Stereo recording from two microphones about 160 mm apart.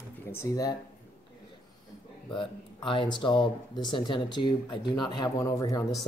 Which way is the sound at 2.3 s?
30° left (ahead or behind).